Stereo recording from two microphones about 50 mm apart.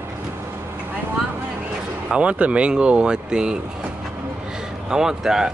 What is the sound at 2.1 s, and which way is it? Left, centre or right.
Speech, right.